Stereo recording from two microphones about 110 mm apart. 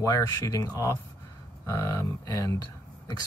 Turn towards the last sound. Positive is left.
turn(degrees=35)  # may be behind; listen again after turning